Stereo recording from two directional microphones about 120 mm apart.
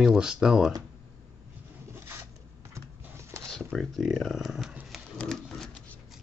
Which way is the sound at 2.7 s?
25° right (ahead or behind).